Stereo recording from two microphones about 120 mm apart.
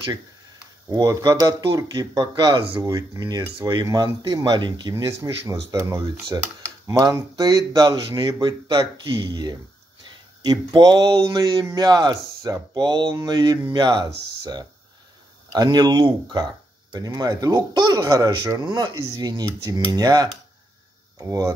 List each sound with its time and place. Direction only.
0.8 s speech: 30° right (ahead or behind)
2.8 s speech: 25° right (ahead or behind)